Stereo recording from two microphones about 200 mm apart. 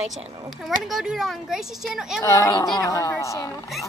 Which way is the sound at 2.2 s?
15° left (ahead or behind).